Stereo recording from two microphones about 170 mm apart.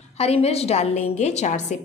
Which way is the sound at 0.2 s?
35° left (ahead or behind).